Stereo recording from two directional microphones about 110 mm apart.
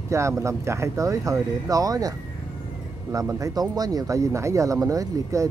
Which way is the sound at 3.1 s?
30° right (ahead or behind).